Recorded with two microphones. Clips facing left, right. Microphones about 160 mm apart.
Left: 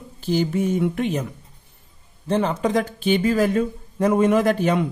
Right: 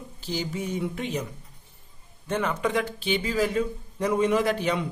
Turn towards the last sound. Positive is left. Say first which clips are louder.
# left 6 dB
turn(degrees=45)  # may be behind; listen again after turning